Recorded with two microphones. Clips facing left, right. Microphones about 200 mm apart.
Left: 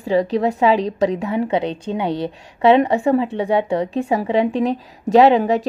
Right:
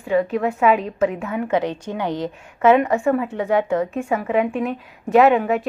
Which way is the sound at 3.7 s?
35° left (ahead or behind).